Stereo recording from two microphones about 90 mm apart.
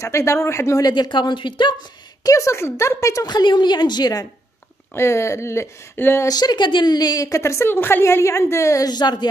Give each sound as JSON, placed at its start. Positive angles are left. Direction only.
{"t": 0.0, "sound": "a woman's voice", "side_deg": 35}
{"t": 0.9, "sound": "a woman's voice", "side_deg": 55}
{"t": 2.2, "sound": "a woman's voice", "side_deg": 35}
{"t": 3.3, "sound": "a woman's voice", "side_deg": 55}
{"t": 4.9, "sound": "speech", "side_deg": 30}
{"t": 6.2, "sound": "a woman's voice", "side_deg": 50}